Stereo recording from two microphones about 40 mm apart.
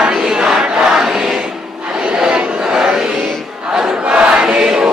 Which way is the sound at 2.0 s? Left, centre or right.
Right.